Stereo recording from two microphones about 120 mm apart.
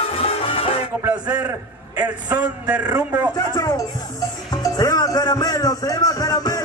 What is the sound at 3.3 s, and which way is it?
Speech, 35° left (ahead or behind).